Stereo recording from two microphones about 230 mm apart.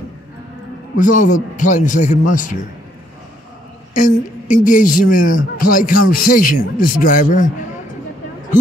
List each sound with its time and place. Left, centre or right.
0.9 s a man's voice: left
4.5 s a man's voice: left